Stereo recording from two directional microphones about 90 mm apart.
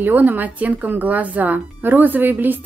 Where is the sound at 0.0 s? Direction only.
20° right (ahead or behind).